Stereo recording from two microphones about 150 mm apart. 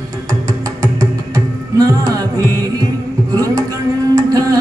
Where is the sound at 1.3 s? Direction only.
20° right (ahead or behind).